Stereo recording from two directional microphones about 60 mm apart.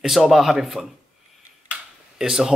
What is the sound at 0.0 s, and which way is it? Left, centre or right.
Speech, centre.